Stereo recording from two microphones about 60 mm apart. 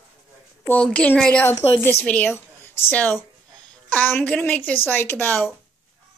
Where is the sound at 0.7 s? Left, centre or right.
Left.